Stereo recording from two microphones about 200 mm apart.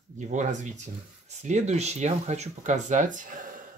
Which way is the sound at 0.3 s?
35° right (ahead or behind).